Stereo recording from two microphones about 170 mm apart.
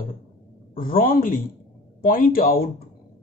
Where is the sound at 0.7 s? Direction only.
55° left (ahead or behind).